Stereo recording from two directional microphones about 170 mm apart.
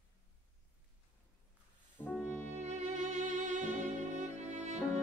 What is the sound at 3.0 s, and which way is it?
Music, 45° right (ahead or behind).